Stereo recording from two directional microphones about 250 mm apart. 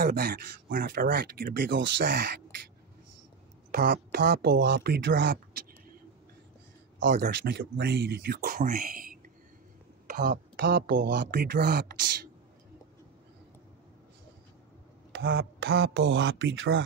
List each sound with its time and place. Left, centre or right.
0.0 s speech: right
3.7 s speech: right
7.0 s speech: right
15.1 s speech: right